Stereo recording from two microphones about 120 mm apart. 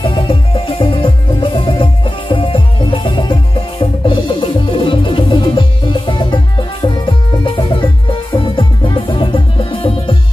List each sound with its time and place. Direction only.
0.0 s music: 45° left (ahead or behind)